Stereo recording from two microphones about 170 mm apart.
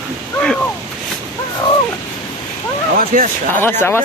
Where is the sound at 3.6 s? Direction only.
15° left (ahead or behind).